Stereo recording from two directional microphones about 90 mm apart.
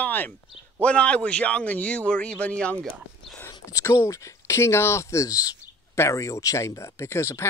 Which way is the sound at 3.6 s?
30° left (ahead or behind).